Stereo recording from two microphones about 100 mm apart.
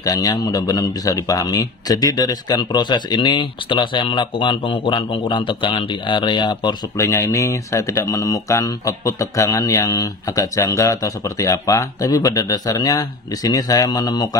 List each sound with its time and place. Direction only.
0.0 s a man's voice: 35° left (ahead or behind)
7.0 s speech: 30° left (ahead or behind)